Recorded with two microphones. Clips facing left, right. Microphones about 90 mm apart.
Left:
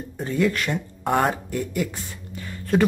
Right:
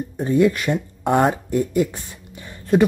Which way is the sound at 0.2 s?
20° right (ahead or behind).